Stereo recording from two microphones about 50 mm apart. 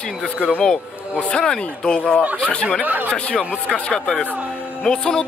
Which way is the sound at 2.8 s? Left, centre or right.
Right.